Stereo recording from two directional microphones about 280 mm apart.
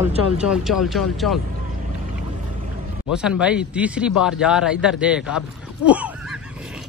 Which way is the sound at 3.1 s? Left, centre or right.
Centre.